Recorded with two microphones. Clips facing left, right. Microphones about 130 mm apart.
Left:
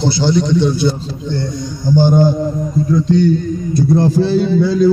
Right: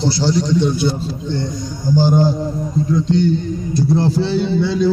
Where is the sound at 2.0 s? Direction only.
55° left (ahead or behind).